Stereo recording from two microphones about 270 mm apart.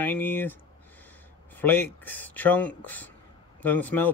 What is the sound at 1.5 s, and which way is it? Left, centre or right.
Speech, centre.